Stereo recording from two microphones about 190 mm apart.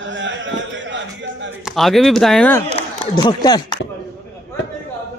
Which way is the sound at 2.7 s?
25° left (ahead or behind).